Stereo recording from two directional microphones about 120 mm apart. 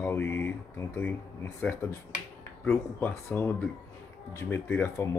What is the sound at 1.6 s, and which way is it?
Speech, 5° left (ahead or behind).